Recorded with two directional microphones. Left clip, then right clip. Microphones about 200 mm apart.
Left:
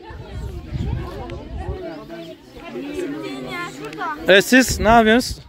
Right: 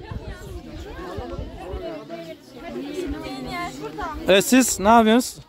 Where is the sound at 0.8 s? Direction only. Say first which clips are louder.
Left 2 dB; centre (ahead or behind).